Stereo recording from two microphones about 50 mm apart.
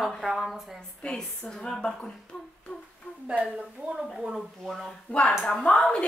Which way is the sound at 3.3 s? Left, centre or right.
Right.